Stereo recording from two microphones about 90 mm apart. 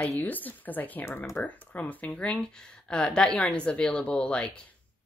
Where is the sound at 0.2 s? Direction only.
20° left (ahead or behind).